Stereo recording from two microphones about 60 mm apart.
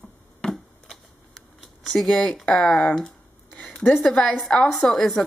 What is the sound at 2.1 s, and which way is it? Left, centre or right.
A woman's voice, centre.